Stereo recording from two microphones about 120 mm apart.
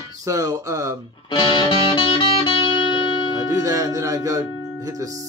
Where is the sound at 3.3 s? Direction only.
30° right (ahead or behind).